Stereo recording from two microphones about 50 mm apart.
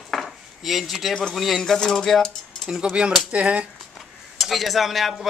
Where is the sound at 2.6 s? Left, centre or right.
Centre.